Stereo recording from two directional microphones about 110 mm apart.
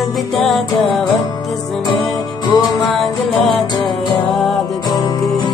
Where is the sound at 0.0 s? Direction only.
Centre (ahead or behind).